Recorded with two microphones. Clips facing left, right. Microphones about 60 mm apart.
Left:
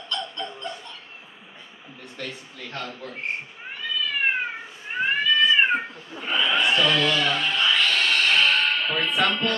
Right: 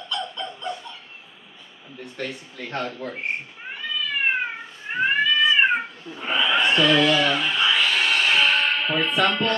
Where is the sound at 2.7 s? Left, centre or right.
Right.